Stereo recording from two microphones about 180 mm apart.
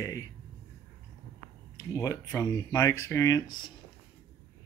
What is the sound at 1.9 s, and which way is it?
Speech, 20° left (ahead or behind).